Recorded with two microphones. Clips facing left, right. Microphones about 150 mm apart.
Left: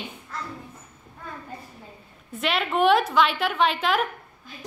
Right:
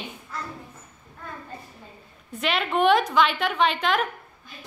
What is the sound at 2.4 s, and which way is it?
A woman's voice, centre (ahead or behind).